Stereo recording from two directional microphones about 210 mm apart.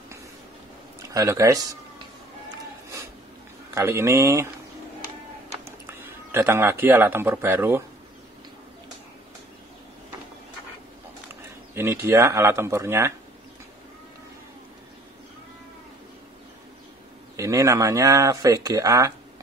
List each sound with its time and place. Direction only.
1.1 s speech: 15° right (ahead or behind)
3.7 s speech: 10° right (ahead or behind)
5.7 s speech: 10° right (ahead or behind)
11.7 s speech: 10° right (ahead or behind)
17.4 s speech: 15° right (ahead or behind)